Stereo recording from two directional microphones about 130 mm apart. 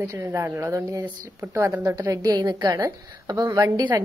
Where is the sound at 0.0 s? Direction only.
20° right (ahead or behind).